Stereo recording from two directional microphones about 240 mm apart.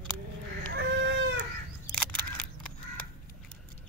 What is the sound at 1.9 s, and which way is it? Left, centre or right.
Single-lens reflex camera, centre.